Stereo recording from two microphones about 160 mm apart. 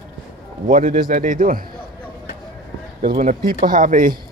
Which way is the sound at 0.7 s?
60° right (ahead or behind).